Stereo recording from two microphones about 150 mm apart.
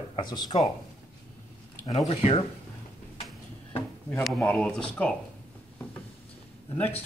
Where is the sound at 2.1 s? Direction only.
45° left (ahead or behind).